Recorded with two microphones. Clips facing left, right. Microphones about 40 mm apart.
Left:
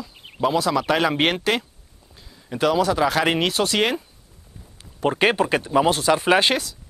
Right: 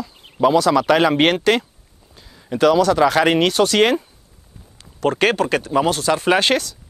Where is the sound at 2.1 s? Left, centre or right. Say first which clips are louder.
Right 6 dB; centre.